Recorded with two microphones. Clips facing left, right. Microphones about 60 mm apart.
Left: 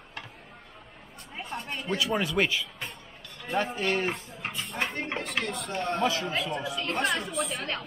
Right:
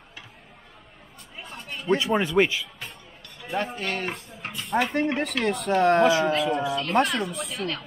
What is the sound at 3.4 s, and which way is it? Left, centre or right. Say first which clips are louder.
Speech: even; centre.